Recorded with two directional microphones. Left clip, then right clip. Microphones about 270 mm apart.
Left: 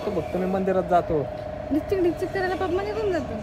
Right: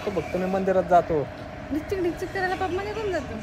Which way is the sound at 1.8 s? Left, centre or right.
Centre.